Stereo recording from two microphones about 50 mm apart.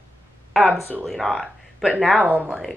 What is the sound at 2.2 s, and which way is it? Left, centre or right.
Speech, right.